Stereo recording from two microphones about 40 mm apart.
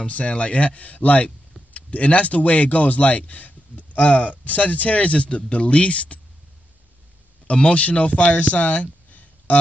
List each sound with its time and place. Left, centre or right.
0.0 s speech: left
7.4 s speech: left